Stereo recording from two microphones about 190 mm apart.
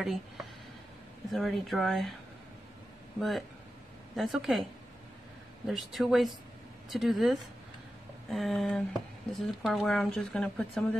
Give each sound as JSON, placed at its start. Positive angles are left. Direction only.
{"t": 0.0, "sound": "speech", "side_deg": 0}
{"t": 3.2, "sound": "speech", "side_deg": 0}
{"t": 5.7, "sound": "speech", "side_deg": 0}